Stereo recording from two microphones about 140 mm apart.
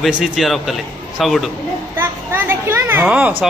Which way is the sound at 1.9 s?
15° right (ahead or behind).